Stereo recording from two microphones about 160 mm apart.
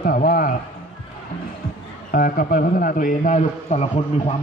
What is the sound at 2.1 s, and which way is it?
A man's voice, 60° left (ahead or behind).